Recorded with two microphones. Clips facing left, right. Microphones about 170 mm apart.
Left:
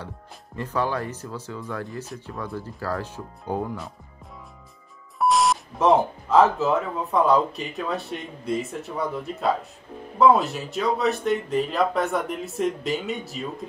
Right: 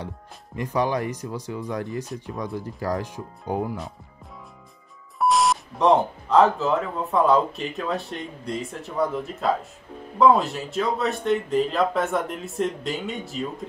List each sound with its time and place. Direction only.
0.6 s speech: 15° right (ahead or behind)
5.2 s speech: centre (ahead or behind)